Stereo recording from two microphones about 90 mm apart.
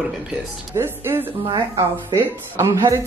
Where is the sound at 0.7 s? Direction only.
25° right (ahead or behind).